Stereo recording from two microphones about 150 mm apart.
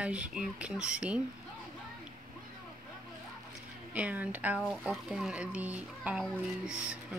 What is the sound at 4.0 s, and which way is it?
Speech, 10° right (ahead or behind).